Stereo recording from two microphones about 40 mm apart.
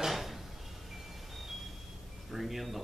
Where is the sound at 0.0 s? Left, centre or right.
Centre.